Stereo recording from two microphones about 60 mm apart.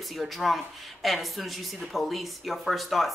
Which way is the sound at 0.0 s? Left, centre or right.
Centre.